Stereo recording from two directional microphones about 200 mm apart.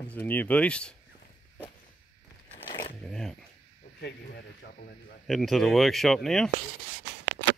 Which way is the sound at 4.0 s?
55° left (ahead or behind).